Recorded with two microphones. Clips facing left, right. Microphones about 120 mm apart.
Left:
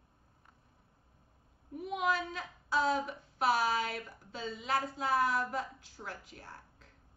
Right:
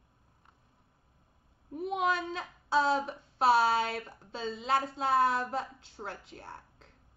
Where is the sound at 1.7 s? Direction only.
30° right (ahead or behind).